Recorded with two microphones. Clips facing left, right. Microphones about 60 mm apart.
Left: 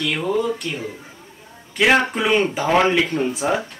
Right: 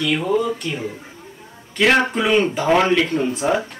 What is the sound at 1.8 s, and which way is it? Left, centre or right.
Speech, centre.